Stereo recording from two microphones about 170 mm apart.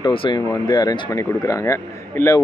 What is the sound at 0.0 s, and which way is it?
A man's voice, 30° left (ahead or behind).